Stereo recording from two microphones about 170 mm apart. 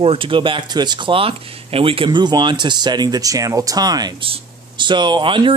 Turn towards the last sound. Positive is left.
turn(degrees=-30)  # may be behind; listen again after turning